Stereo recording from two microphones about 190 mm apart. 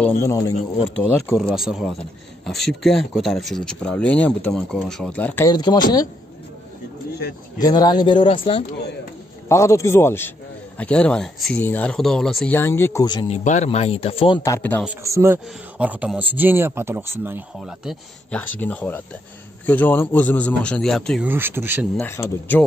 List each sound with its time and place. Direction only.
0.0 s a man's voice: 15° left (ahead or behind)
1.0 s a man's voice: 5° right (ahead or behind)
5.5 s speech: 20° left (ahead or behind)
7.5 s speech: 20° left (ahead or behind)
9.5 s a man's voice: 15° left (ahead or behind)
13.3 s speech: 40° left (ahead or behind)
14.4 s a man's voice: 10° left (ahead or behind)
15.0 s speech: 15° right (ahead or behind)
18.6 s a man's voice: 10° left (ahead or behind)
21.3 s speech: 10° right (ahead or behind)
21.9 s a man's voice: 15° left (ahead or behind)